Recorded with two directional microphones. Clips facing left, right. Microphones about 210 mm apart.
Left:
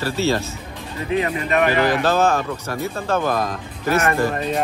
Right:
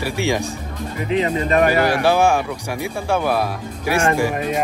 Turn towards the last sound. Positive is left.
turn(degrees=-10)  # may be behind; listen again after turning